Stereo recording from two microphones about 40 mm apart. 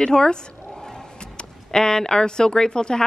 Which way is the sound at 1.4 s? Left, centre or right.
Centre.